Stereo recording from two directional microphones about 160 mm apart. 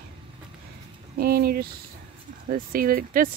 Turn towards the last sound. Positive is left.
turn(degrees=-60)  # may be behind; listen again after turning